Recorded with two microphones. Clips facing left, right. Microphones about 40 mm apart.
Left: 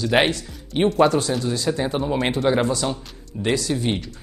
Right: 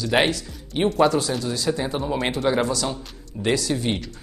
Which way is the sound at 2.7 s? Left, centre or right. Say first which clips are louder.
Left 2 dB; left.